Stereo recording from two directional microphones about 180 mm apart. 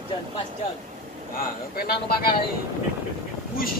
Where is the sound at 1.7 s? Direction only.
60° left (ahead or behind).